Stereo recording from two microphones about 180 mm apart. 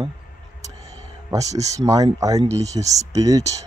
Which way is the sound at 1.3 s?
20° right (ahead or behind).